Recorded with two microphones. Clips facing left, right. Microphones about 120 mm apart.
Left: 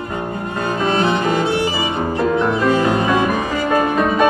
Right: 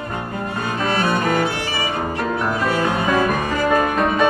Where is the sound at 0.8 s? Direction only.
25° left (ahead or behind).